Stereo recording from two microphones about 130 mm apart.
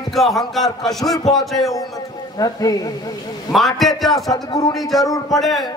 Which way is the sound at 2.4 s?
30° left (ahead or behind).